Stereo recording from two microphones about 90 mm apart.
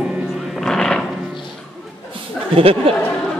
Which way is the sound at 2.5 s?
90° right.